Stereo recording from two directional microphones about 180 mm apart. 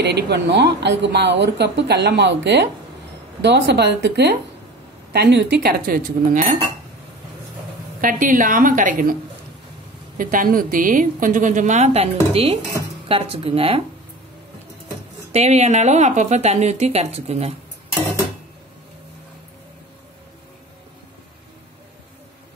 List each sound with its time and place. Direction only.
0.0 s a woman's voice: 70° right (ahead or behind); by 6.4 s 50° right (ahead or behind)
8.0 s a woman's voice: 50° right (ahead or behind)
10.1 s a woman's voice: 50° right (ahead or behind); by 13.8 s 30° right (ahead or behind)
15.3 s a woman's voice: 35° right (ahead or behind)